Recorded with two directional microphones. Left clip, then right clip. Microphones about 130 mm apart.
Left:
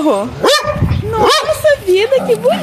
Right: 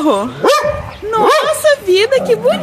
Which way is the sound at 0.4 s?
90° left.